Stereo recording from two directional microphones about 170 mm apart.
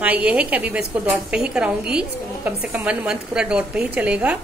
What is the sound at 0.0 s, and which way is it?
A woman's voice, 10° right (ahead or behind).